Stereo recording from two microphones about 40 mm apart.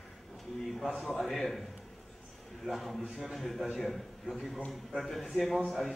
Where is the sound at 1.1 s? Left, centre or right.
Centre.